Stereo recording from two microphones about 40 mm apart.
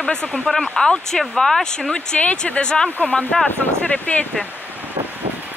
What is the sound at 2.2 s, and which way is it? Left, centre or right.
Speech, left.